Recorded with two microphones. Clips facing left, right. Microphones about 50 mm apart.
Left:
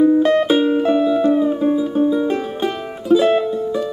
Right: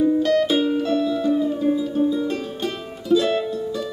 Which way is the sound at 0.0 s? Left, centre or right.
Left.